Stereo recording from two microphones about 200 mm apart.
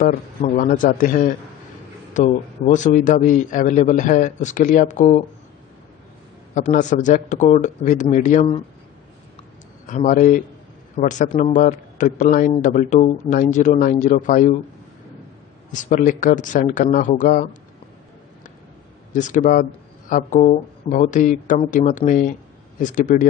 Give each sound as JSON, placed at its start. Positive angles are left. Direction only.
{"t": 0.6, "sound": "a man's voice", "side_deg": 40}
{"t": 6.5, "sound": "a man's voice", "side_deg": 40}
{"t": 9.8, "sound": "a man's voice", "side_deg": 40}
{"t": 15.7, "sound": "a man's voice", "side_deg": 40}
{"t": 19.1, "sound": "a man's voice", "side_deg": 40}